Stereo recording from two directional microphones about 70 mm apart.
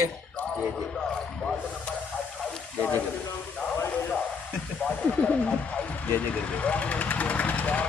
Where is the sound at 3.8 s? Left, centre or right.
Left.